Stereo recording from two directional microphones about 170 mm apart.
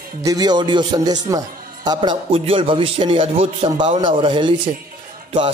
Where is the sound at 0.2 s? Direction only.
20° right (ahead or behind).